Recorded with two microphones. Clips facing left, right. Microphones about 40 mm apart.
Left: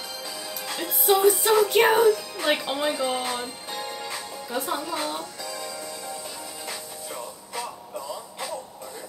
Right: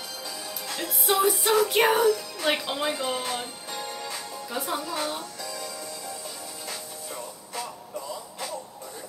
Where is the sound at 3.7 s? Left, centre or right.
Left.